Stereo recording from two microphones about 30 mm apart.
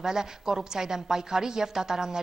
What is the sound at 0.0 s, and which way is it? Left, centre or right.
A woman's voice, centre.